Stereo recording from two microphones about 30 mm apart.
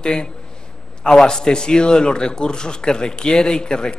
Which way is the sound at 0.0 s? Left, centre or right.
Left.